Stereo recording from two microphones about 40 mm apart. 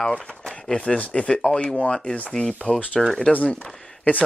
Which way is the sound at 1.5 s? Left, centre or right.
Centre.